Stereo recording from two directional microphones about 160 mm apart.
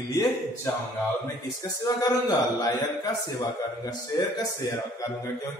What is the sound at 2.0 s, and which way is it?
A man's voice, 25° left (ahead or behind).